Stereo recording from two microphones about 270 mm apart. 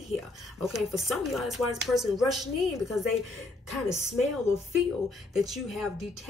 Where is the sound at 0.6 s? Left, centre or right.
Centre.